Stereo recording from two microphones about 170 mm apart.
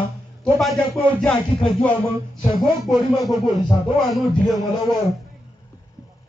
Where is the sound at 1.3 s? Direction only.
35° left (ahead or behind).